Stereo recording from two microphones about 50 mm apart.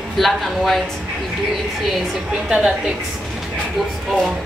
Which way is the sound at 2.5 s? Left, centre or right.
Centre.